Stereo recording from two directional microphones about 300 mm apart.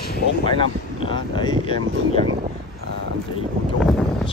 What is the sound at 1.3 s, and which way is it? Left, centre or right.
Speech, centre.